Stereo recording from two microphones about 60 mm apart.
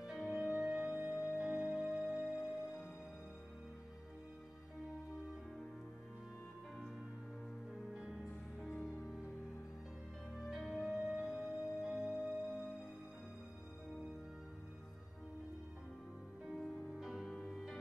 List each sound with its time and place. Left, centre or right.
0.2 s music: centre
0.6 s music: centre
7.9 s music: centre
10.3 s music: centre
17.2 s music: centre